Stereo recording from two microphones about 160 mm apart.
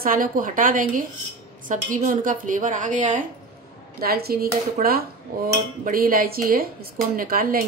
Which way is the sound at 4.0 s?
75° right (ahead or behind).